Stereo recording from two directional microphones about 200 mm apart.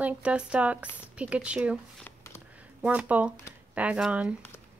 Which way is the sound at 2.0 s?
15° left (ahead or behind).